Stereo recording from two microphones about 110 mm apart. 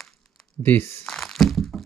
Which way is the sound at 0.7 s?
20° left (ahead or behind).